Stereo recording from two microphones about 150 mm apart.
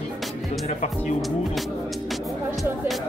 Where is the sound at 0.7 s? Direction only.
50° left (ahead or behind).